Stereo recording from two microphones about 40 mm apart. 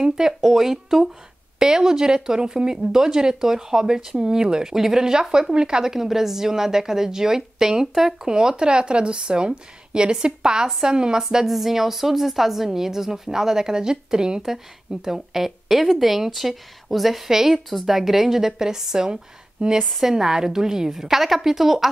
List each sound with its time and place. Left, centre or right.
0.4 s speech: centre
14.4 s a woman's voice: centre